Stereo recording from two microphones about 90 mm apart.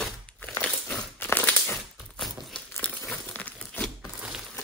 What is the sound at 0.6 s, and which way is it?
Biting, 10° left (ahead or behind).